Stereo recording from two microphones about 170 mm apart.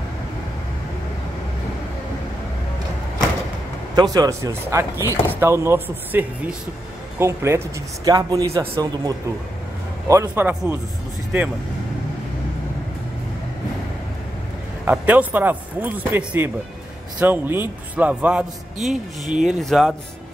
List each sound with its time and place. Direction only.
3.9 s a man's voice: 20° right (ahead or behind)
14.9 s a man's voice: 10° right (ahead or behind)